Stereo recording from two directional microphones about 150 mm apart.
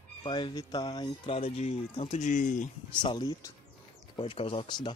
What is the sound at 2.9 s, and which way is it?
Speech, 30° left (ahead or behind).